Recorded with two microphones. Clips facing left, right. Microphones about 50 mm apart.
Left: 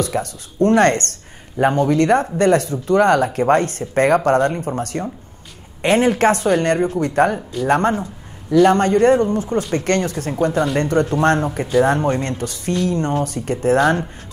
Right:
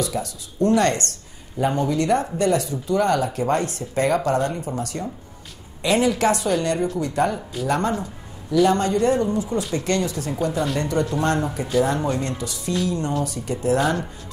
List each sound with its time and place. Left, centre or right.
0.0 s speech: left